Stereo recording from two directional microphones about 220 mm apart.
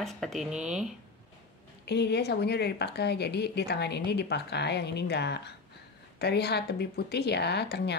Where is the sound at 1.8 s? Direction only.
50° left (ahead or behind).